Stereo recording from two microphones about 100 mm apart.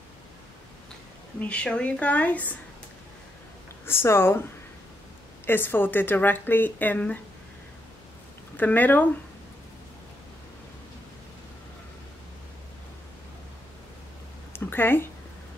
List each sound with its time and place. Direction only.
1.4 s speech: 10° left (ahead or behind)
3.8 s speech: 25° left (ahead or behind)
5.5 s speech: 20° left (ahead or behind)
8.5 s speech: 15° left (ahead or behind)
14.5 s a sound: 20° left (ahead or behind)